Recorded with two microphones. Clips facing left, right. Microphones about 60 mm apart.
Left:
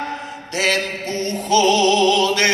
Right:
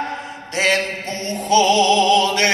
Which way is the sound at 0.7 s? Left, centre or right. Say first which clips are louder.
Left 1 dB; right.